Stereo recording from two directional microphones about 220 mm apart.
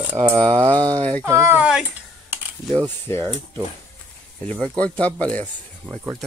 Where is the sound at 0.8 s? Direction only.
25° right (ahead or behind).